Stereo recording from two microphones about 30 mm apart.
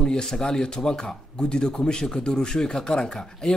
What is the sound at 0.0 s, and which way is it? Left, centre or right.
Speech, left.